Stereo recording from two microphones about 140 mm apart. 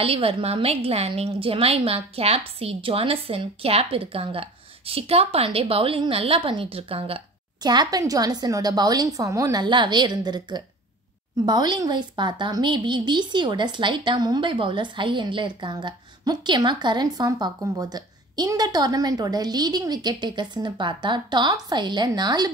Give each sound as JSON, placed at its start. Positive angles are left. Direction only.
{"t": 0.0, "sound": "a woman's voice", "side_deg": -40}